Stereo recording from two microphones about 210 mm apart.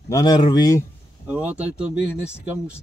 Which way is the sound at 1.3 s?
5° right (ahead or behind).